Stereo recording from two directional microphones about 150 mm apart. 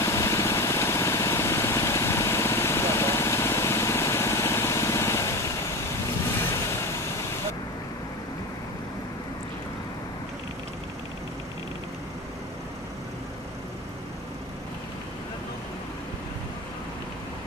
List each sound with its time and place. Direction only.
0.0 s vehicle: 20° left (ahead or behind)